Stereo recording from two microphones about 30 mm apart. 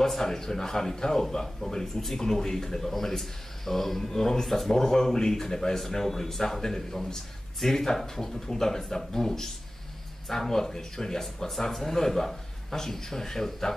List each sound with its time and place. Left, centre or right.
0.2 s a man's voice: centre
4.7 s a man's voice: centre